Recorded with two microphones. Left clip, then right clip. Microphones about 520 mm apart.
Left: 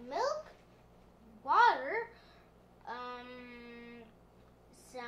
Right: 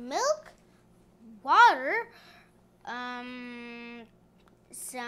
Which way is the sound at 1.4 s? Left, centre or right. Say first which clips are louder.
Right 7 dB; right.